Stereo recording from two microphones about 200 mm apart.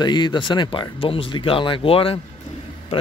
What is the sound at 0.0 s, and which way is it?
Speech, 20° left (ahead or behind).